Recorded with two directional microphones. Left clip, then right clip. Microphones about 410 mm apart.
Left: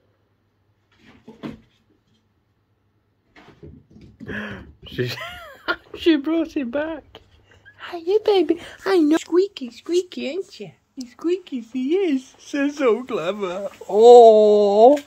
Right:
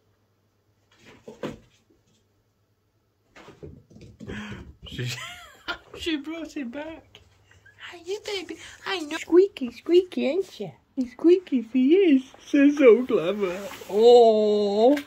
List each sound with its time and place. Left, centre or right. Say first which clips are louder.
4.3 s speech: left 7 dB; centre
9.8 s speech: right 2 dB; centre
11.1 s speech: right 5 dB; left
12.0 s speech: right 2 dB; centre